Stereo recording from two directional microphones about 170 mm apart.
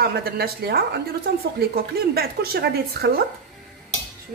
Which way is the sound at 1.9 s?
65° right (ahead or behind).